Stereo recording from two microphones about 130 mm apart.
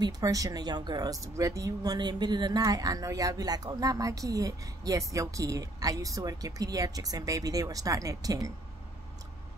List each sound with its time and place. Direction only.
0.0 s speech: 25° right (ahead or behind)